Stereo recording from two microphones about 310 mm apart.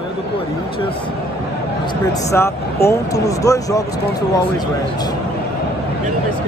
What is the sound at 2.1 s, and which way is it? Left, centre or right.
A man's voice, centre.